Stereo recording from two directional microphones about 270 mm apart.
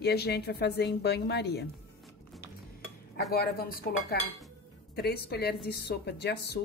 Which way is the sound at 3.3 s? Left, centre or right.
Left.